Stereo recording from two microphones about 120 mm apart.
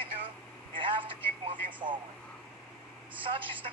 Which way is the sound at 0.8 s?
45° right (ahead or behind).